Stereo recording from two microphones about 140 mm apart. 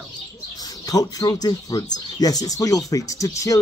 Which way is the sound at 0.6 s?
25° left (ahead or behind).